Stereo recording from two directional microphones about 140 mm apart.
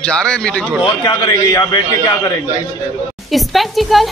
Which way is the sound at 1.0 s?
30° left (ahead or behind).